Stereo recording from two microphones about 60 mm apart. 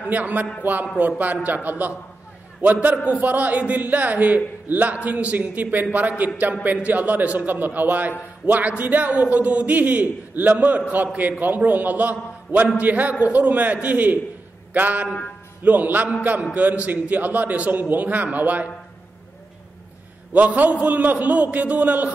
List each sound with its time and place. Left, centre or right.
0.1 s a man's voice: right
20.3 s a man's voice: right